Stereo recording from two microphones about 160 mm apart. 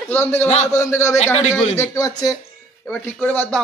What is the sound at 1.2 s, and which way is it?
Speech, 45° left (ahead or behind).